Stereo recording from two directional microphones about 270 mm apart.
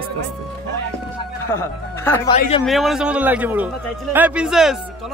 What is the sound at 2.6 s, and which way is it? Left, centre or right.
Speech, centre.